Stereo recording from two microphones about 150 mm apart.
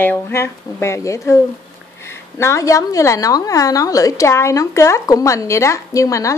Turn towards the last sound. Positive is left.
turn(degrees=20)  # may be behind; listen again after turning